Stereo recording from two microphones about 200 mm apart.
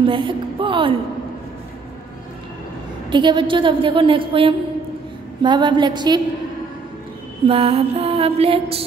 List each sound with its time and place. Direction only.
0.0 s a woman's voice: 25° right (ahead or behind)
3.1 s a woman's voice: 25° right (ahead or behind)
7.4 s a woman's voice: 30° right (ahead or behind)